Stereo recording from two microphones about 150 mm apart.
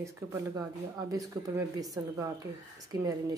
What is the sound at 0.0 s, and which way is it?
A woman's voice, 20° right (ahead or behind).